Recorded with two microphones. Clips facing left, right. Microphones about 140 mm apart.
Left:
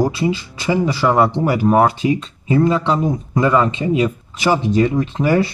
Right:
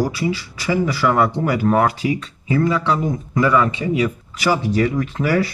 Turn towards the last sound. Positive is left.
turn(degrees=20)  # may be behind; listen again after turning